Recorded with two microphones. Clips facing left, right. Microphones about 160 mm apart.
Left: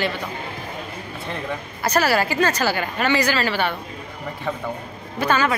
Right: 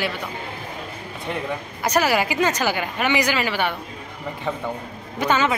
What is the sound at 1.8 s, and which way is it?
A woman's voice, 15° right (ahead or behind).